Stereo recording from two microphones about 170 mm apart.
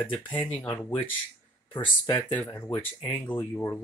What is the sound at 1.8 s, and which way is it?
Speech, 25° left (ahead or behind).